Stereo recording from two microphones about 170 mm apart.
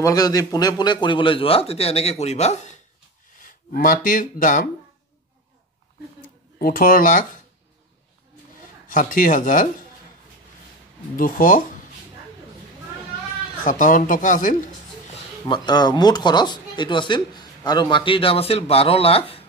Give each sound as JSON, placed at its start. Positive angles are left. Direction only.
{"t": 0.0, "sound": "a man's voice", "side_deg": 20}
{"t": 3.3, "sound": "speech", "side_deg": 55}
{"t": 6.6, "sound": "speech", "side_deg": 55}
{"t": 8.8, "sound": "speech", "side_deg": 55}
{"t": 11.1, "sound": "speech", "side_deg": 55}
{"t": 13.7, "sound": "speech", "side_deg": 50}
{"t": 15.4, "sound": "speech", "side_deg": 25}